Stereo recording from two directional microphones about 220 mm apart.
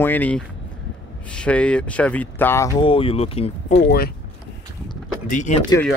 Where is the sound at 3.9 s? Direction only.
45° left (ahead or behind).